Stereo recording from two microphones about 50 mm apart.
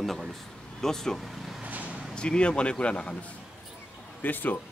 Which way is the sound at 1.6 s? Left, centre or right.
Right.